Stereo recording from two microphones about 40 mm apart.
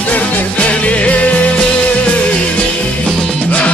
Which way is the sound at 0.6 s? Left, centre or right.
Left.